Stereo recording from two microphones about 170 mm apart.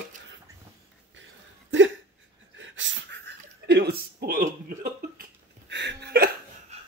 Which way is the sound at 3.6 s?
70° right (ahead or behind).